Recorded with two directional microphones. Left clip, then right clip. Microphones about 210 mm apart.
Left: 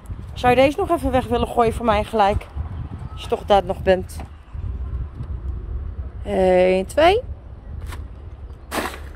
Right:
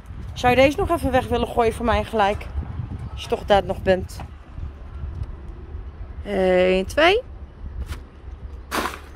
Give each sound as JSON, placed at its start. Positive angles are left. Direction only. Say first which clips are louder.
{"t": 0.3, "sound": "speech", "louder": "left 1 dB", "side_deg": 5}
{"t": 6.2, "sound": "speech", "louder": "left 2 dB", "side_deg": 0}
{"t": 8.6, "sound": "whip", "louder": "even", "side_deg": 5}